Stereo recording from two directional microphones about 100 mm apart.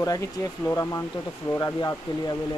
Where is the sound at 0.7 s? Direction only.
30° left (ahead or behind).